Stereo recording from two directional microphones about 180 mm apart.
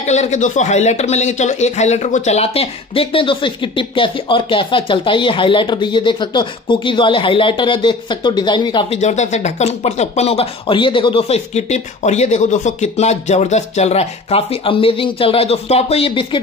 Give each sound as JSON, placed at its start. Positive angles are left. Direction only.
{"t": 0.0, "sound": "speech", "side_deg": 40}
{"t": 9.0, "sound": "speech", "side_deg": 40}